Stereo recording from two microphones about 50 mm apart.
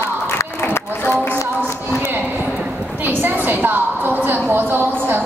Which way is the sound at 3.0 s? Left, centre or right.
Right.